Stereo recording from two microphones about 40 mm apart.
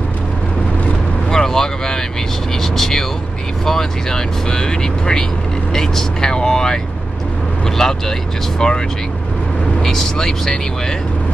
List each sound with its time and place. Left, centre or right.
1.3 s vehicle: centre
3.6 s speech: centre
5.7 s vehicle: centre
7.8 s speech: centre